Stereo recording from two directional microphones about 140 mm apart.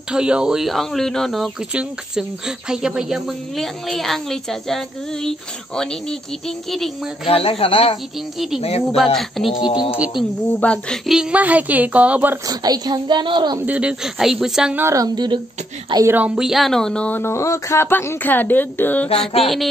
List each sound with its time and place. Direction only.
0.1 s speech: 5° right (ahead or behind)
7.2 s speech: 45° left (ahead or behind)
8.9 s speech: centre (ahead or behind)
9.6 s speech: 35° left (ahead or behind)
9.8 s a woman's voice: 10° right (ahead or behind)
10.6 s speech: 10° left (ahead or behind)
11.1 s a woman's voice: 5° right (ahead or behind)
12.4 s a woman's voice: 30° right (ahead or behind)
13.7 s speech: 5° right (ahead or behind)
14.8 s a woman's voice: 20° right (ahead or behind)
16.1 s speech: 10° right (ahead or behind); by 19.0 s 15° left (ahead or behind)
19.4 s speech: centre (ahead or behind)